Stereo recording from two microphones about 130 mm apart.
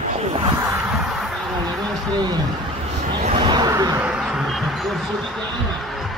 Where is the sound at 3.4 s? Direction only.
35° right (ahead or behind).